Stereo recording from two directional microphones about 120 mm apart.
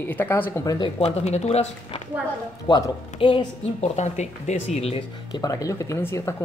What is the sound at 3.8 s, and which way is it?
Speech, 75° left (ahead or behind).